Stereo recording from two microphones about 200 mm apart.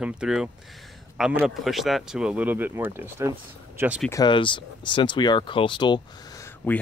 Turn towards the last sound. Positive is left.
turn(degrees=10)  # may be behind; listen again after turning